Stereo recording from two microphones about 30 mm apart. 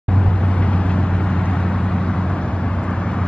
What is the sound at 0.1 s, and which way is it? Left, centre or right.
Vehicle, left.